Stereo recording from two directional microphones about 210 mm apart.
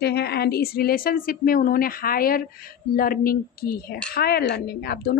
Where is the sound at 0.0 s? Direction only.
50° left (ahead or behind).